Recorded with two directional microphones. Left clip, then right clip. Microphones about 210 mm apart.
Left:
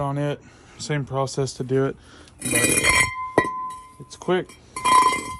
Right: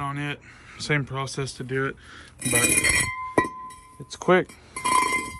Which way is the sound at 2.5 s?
Centre (ahead or behind).